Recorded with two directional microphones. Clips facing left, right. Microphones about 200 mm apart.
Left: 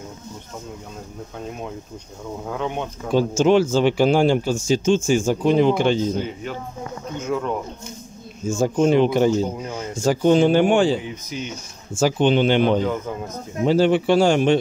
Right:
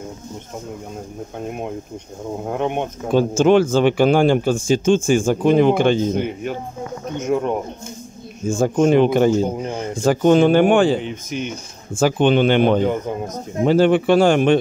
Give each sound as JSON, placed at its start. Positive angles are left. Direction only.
{"t": 2.4, "sound": "speech", "side_deg": -55}
{"t": 7.3, "sound": "speech", "side_deg": -20}
{"t": 8.5, "sound": "a man's voice", "side_deg": -55}